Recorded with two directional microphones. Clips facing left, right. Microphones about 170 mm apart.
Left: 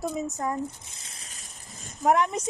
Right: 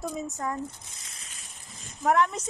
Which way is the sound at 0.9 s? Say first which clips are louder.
Left 2 dB; 30° left (ahead or behind).